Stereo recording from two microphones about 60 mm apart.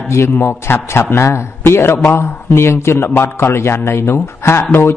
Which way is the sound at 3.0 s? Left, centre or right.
Left.